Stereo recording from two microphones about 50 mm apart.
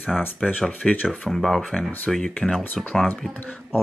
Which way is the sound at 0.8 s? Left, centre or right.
Left.